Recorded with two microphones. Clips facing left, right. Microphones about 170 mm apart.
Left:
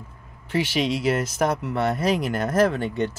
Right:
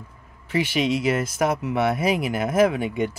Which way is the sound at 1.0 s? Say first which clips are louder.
Even; 5° right (ahead or behind).